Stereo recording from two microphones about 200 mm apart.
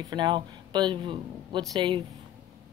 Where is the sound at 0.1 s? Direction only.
20° right (ahead or behind).